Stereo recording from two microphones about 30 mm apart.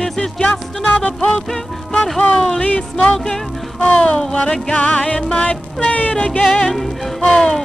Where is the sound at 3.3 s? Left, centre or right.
Centre.